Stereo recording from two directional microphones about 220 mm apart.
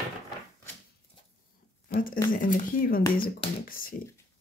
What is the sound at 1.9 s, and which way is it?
Speech, 40° left (ahead or behind).